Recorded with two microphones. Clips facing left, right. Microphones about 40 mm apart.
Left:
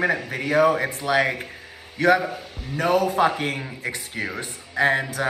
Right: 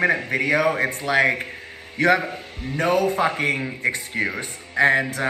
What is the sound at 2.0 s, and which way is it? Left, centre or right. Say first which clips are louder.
A man's voice: even; right.